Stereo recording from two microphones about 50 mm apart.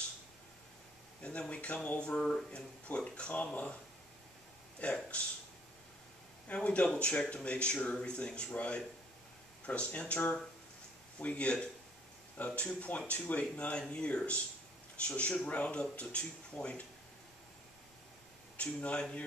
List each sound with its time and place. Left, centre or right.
1.2 s speech: left
4.7 s speech: left
6.4 s speech: left
18.6 s speech: left